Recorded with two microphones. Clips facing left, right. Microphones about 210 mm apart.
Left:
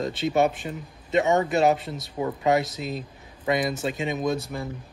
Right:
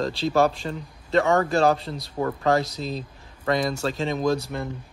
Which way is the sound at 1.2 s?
20° left (ahead or behind).